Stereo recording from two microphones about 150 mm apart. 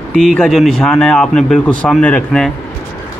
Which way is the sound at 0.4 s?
Centre (ahead or behind).